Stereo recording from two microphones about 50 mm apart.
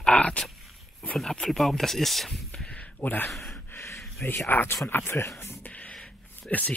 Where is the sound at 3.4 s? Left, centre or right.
Left.